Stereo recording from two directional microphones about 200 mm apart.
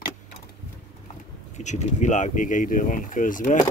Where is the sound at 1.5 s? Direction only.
35° left (ahead or behind).